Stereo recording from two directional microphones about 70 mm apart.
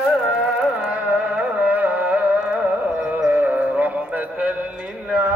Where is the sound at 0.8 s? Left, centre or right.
Centre.